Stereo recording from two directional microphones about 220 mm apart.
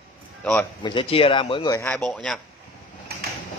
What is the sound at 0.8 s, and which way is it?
Speech, 25° left (ahead or behind).